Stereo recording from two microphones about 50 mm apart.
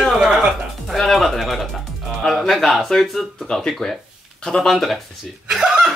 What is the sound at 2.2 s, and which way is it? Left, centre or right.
Speech, centre.